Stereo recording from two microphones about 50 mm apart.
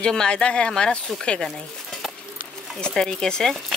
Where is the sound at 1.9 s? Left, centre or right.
Centre.